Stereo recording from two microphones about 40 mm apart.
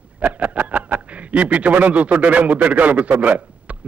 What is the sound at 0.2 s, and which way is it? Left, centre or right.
A man's voice, right.